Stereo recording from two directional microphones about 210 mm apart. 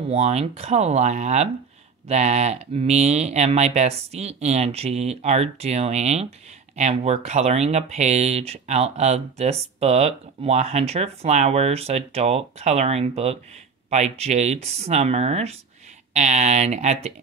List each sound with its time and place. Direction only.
0.1 s speech: 30° right (ahead or behind)